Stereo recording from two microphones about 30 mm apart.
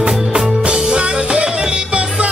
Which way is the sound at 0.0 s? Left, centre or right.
Right.